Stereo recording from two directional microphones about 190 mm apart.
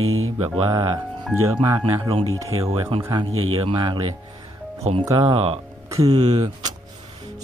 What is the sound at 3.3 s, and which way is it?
Speech, 90° right.